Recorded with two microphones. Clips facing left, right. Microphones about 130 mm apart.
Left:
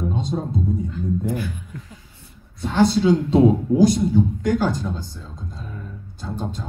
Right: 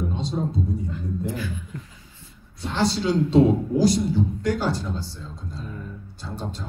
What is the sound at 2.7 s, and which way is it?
A man's voice, 50° left (ahead or behind).